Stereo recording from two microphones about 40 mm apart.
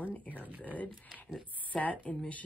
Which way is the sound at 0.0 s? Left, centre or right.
Left.